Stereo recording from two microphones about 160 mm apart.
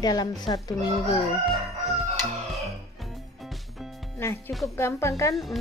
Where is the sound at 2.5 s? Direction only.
Centre (ahead or behind).